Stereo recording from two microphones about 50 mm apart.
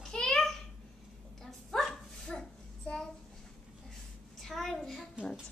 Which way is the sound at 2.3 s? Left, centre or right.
Centre.